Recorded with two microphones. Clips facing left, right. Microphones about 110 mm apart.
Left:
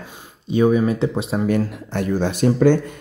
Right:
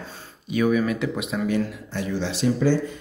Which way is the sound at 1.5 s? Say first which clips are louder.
Left 4 dB; 50° left (ahead or behind).